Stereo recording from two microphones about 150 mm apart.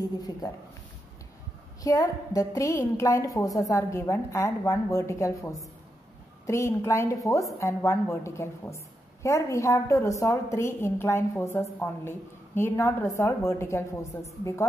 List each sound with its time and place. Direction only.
1.8 s a woman's voice: 25° left (ahead or behind)